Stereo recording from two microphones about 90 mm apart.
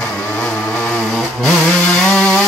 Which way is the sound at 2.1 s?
10° left (ahead or behind).